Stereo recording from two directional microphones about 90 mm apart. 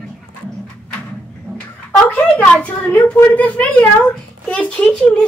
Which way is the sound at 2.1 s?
15° left (ahead or behind).